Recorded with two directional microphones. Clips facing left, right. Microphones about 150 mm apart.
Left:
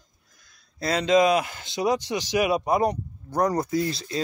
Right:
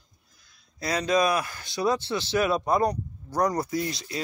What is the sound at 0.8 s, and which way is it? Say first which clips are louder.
Speech: left 4 dB; 25° left (ahead or behind).